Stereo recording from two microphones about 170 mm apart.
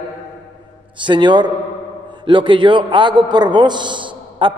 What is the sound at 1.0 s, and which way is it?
A man's voice, 25° right (ahead or behind).